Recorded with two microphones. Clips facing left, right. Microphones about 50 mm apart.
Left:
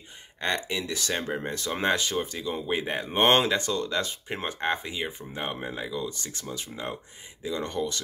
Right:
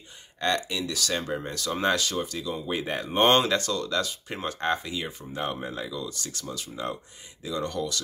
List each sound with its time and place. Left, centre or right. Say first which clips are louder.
0.4 s speech: right 2 dB; left
4.5 s speech: right 2 dB; centre